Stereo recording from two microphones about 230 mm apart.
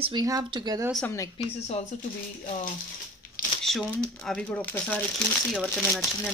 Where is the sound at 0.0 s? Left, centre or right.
Centre.